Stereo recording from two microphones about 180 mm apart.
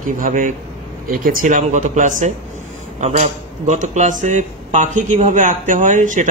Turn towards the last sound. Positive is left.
turn(degrees=-45)  # may be behind; listen again after turning